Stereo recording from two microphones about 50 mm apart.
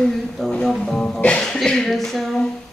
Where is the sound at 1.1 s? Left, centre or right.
Left.